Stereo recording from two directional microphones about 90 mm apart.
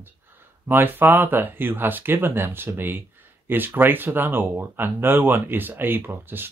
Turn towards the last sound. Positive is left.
turn(degrees=-25)  # may be behind; listen again after turning